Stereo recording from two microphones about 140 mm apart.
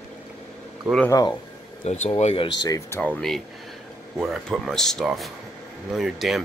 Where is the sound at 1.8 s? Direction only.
55° left (ahead or behind).